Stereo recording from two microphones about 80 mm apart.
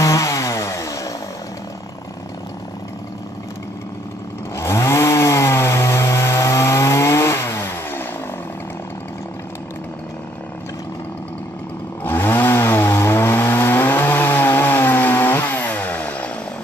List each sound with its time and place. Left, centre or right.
0.0 s chainsaw: left
4.6 s chainsaw: left
12.0 s chainsaw: left